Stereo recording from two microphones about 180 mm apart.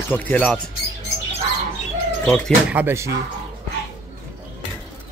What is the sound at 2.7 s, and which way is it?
Speech, 15° right (ahead or behind).